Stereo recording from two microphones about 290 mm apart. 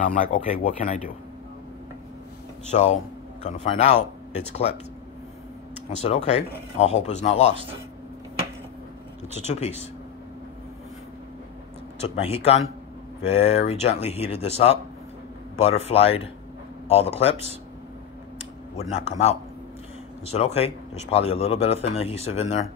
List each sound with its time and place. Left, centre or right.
0.0 s speech: left
2.7 s speech: left
6.0 s speech: left
9.5 s speech: left
12.0 s speech: left
15.5 s speech: left
18.8 s speech: left
20.3 s speech: left